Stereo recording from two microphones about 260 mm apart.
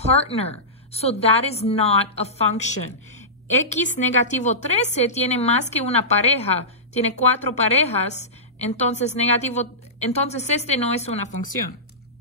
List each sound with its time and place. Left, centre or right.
0.0 s a woman's voice: left